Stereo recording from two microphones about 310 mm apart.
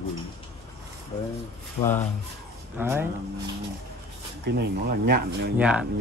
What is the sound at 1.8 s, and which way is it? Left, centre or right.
Speech, centre.